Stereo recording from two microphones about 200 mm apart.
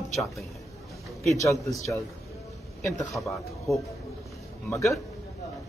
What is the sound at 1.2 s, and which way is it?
Speech, 15° left (ahead or behind).